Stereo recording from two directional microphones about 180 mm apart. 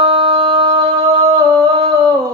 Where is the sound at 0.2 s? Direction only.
25° right (ahead or behind).